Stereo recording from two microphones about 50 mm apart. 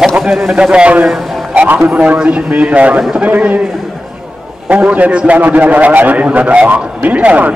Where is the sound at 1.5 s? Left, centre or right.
Right.